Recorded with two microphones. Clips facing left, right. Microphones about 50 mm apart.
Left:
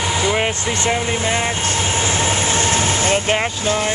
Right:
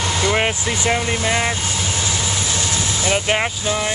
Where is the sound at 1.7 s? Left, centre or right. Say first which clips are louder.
Left 4 dB; left.